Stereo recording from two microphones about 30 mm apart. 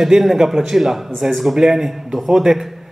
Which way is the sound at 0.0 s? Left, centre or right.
Centre.